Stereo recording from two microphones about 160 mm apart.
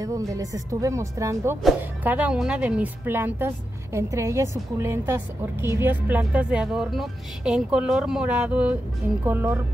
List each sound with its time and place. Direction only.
0.0 s speech: 20° right (ahead or behind)